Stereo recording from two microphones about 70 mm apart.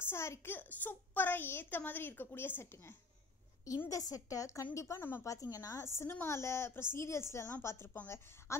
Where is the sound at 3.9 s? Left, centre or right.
Left.